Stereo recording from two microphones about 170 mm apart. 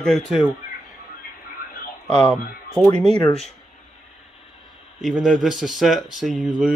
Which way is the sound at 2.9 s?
35° right (ahead or behind).